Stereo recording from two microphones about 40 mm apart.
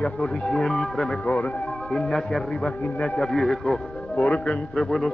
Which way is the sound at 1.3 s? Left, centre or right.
Left.